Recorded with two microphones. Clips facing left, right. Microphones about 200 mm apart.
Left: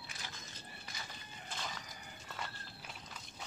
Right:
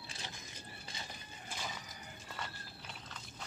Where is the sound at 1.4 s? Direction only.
10° right (ahead or behind).